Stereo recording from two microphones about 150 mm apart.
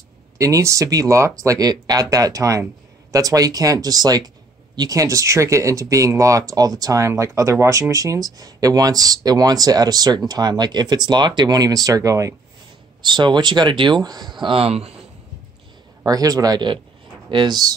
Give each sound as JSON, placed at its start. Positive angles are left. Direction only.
{"t": 0.4, "sound": "speech", "side_deg": -20}
{"t": 16.1, "sound": "speech", "side_deg": -25}